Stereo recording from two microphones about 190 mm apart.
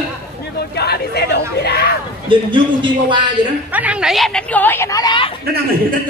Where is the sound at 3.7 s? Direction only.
5° right (ahead or behind); by 5.3 s 25° left (ahead or behind).